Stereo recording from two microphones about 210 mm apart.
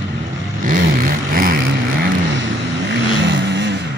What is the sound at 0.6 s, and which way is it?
Vehicle, 45° right (ahead or behind).